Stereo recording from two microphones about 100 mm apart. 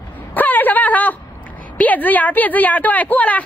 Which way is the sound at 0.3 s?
15° left (ahead or behind).